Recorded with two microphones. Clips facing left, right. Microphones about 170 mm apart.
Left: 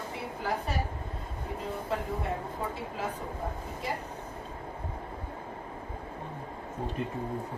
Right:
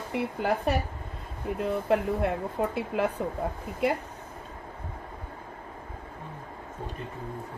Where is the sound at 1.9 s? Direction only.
65° right (ahead or behind).